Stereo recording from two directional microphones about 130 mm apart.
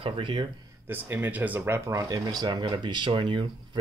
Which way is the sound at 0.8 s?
15° right (ahead or behind).